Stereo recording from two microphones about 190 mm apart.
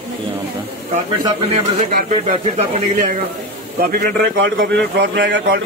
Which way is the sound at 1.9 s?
40° right (ahead or behind).